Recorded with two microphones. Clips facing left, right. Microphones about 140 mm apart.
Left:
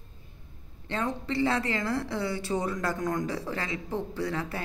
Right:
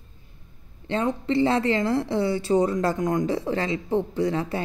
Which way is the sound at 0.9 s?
25° right (ahead or behind).